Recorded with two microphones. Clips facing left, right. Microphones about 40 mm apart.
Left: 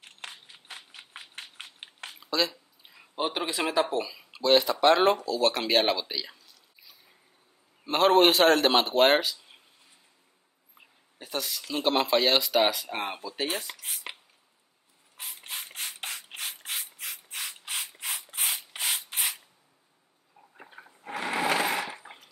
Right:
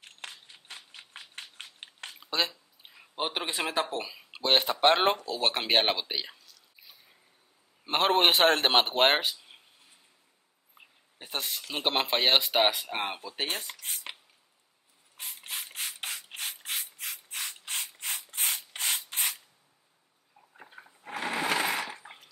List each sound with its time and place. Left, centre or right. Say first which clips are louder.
0.5 s scissors: left 2 dB; centre
1.4 s biting: left 1 dB; centre
2.9 s speech: left 2 dB; centre
4.3 s a man's voice: left 3 dB; right
7.8 s a man's voice: left 4 dB; right
11.1 s a man's voice: left 2 dB; right
13.7 s speech: left 1 dB; centre
15.1 s rub: even; centre
20.5 s sewing machine: left 1 dB; centre
22.0 s a sound: left 1 dB; centre